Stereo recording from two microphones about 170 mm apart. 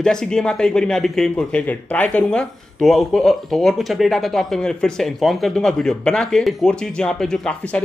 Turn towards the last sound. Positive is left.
turn(degrees=5)  # may be behind; listen again after turning